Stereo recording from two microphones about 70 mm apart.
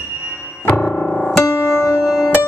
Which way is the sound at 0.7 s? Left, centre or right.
Left.